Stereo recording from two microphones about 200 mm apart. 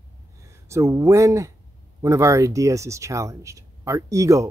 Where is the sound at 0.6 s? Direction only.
15° right (ahead or behind).